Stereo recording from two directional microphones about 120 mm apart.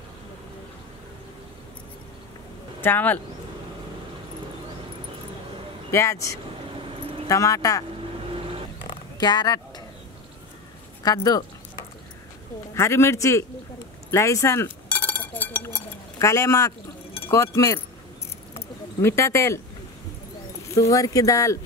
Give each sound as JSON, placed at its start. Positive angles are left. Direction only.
{"t": 2.8, "sound": "speech", "side_deg": 15}
{"t": 5.9, "sound": "speech", "side_deg": 25}
{"t": 9.2, "sound": "speech", "side_deg": 35}
{"t": 11.0, "sound": "speech", "side_deg": 30}
{"t": 12.7, "sound": "speech", "side_deg": 25}
{"t": 14.9, "sound": "chink", "side_deg": 15}
{"t": 17.3, "sound": "speech", "side_deg": 25}
{"t": 18.5, "sound": "a sound", "side_deg": 20}
{"t": 20.7, "sound": "speech", "side_deg": 30}